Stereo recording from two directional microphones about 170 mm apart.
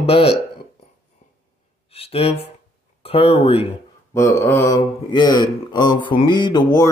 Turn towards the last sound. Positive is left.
turn(degrees=25)  # may be behind; listen again after turning